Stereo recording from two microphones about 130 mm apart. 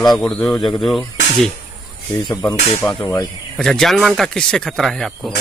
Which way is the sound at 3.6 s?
Centre (ahead or behind).